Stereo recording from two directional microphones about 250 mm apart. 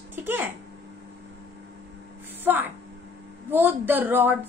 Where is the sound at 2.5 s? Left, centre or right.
Centre.